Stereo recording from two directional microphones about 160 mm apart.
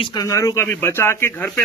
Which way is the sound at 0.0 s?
25° left (ahead or behind).